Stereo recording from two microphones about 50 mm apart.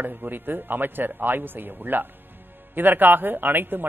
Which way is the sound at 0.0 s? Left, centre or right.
Right.